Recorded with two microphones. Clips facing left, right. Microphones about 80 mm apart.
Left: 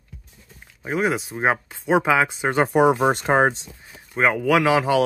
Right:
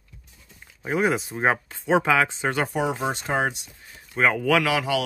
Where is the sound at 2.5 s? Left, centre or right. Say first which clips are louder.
Left 6 dB; left.